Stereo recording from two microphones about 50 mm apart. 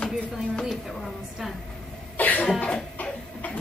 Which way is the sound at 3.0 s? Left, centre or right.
Left.